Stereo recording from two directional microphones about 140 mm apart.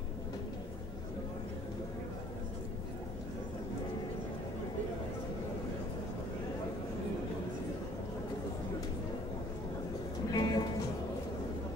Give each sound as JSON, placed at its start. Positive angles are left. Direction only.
{"t": 10.3, "sound": "music", "side_deg": 30}